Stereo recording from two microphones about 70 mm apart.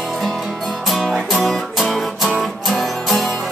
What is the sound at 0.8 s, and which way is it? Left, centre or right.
Music, centre.